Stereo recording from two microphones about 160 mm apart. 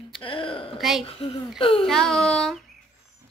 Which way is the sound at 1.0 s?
35° left (ahead or behind).